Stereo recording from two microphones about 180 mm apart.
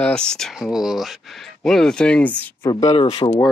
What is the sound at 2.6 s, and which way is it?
Speech, 30° left (ahead or behind).